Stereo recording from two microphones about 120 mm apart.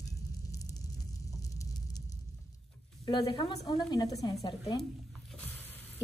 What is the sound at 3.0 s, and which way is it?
A woman's voice, 40° left (ahead or behind).